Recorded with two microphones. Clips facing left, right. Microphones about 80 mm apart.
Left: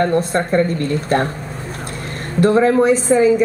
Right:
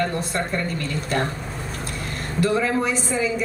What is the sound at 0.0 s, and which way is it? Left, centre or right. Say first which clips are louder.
Speech: left 8 dB; left.